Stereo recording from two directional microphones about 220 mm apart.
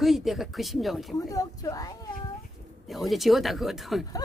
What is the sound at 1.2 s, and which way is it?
Speech, 15° left (ahead or behind).